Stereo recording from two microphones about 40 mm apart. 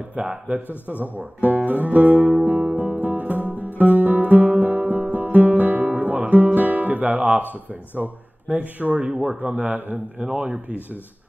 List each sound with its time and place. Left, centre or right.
0.1 s speech: right
0.9 s speech: left
1.4 s speech: right
2.7 s music: right
8.0 s speech: right
9.7 s a man's voice: right